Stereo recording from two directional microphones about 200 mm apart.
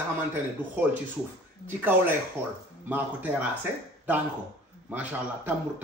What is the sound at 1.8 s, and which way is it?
A man's voice, 10° right (ahead or behind).